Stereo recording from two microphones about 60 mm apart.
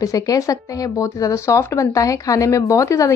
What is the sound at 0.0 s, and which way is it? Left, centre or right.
Speech, left.